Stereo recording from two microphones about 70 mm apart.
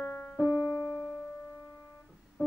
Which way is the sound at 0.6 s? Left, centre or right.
Left.